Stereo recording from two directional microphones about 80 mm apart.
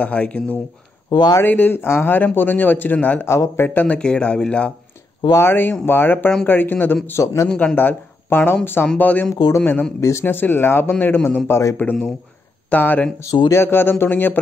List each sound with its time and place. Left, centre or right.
0.0 s speech: centre
1.1 s speech: left
1.4 s speech: left
3.3 s a man's voice: left
3.8 s speech: centre
5.3 s speech: left
7.1 s a man's voice: left
7.4 s speech: centre
9.9 s a man's voice: left
10.2 s speech: left
11.8 s speech: centre